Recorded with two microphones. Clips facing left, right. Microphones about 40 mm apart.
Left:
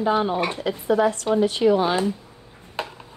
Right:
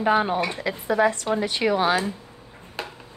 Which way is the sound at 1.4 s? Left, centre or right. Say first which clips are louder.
Left 4 dB; right.